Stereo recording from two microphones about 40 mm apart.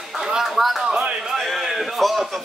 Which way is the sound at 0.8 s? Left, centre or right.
Right.